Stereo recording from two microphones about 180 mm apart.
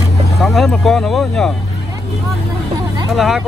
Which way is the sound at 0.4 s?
Centre (ahead or behind).